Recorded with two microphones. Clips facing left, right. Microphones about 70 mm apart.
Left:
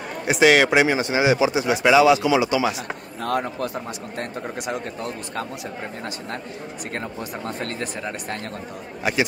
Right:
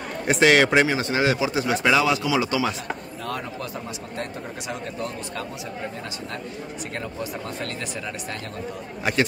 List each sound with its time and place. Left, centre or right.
0.2 s speech: centre
3.3 s a man's voice: left
7.0 s speech: left
9.0 s a man's voice: centre